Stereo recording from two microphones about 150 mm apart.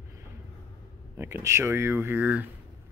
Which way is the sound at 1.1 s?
15° right (ahead or behind).